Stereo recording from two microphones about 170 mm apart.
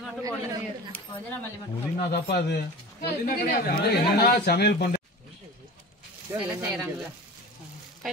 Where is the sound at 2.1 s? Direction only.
70° left (ahead or behind).